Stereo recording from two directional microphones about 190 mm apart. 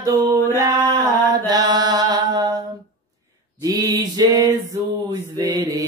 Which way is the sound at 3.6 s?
20° right (ahead or behind).